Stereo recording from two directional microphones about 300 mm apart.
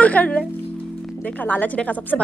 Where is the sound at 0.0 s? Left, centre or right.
Centre.